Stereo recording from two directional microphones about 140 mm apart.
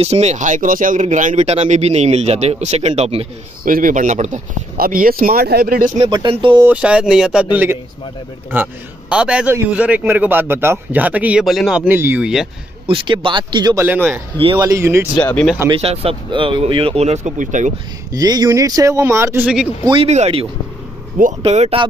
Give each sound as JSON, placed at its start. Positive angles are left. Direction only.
{"t": 0.0, "sound": "speech", "side_deg": -50}
{"t": 3.6, "sound": "speech", "side_deg": -75}
{"t": 5.9, "sound": "speech", "side_deg": -30}
{"t": 6.6, "sound": "a man's voice", "side_deg": -10}
{"t": 9.1, "sound": "a man's voice", "side_deg": -5}
{"t": 11.9, "sound": "a man's voice", "side_deg": -15}
{"t": 12.8, "sound": "speech", "side_deg": -35}
{"t": 13.7, "sound": "a man's voice", "side_deg": -15}
{"t": 14.4, "sound": "speech", "side_deg": -30}
{"t": 15.8, "sound": "speech", "side_deg": -45}
{"t": 18.1, "sound": "speech", "side_deg": -30}
{"t": 19.4, "sound": "speech", "side_deg": -5}
{"t": 20.0, "sound": "speech", "side_deg": -50}